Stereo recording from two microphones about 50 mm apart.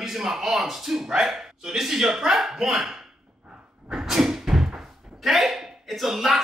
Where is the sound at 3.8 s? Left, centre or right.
Centre.